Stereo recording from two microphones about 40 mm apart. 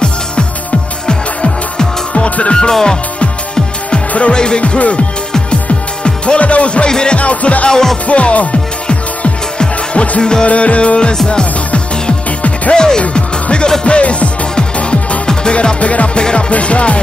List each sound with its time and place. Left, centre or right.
1.0 s music: left
2.7 s music: centre
4.3 s music: left
6.0 s speech: left
6.9 s music: left
7.2 s music: left
7.7 s music: centre
8.1 s music: left
12.7 s music: centre
15.5 s music: left